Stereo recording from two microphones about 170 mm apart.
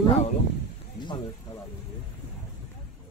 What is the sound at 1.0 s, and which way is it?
Speech, 25° left (ahead or behind).